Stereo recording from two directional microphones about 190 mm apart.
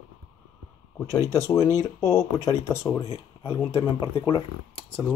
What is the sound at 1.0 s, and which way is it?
Speech, 15° right (ahead or behind).